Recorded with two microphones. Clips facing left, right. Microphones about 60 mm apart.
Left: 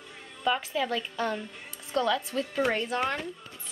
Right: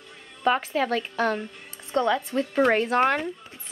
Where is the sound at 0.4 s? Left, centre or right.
Right.